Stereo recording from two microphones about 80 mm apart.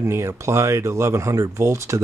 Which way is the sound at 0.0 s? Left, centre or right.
Right.